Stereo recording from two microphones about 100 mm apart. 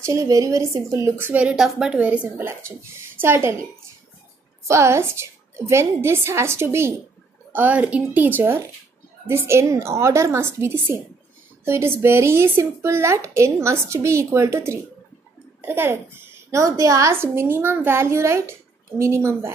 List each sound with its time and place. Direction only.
0.0 s speech: 30° right (ahead or behind)
1.1 s a child's voice: 15° right (ahead or behind)
4.6 s a child's voice: 30° right (ahead or behind)